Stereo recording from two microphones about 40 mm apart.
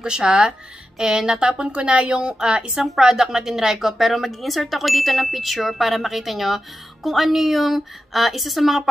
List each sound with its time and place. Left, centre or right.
0.0 s a woman's voice: centre
1.5 s a woman's voice: right; by 8.8 s centre